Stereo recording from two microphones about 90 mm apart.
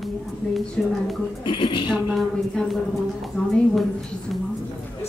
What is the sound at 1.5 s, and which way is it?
Speech, 65° left (ahead or behind).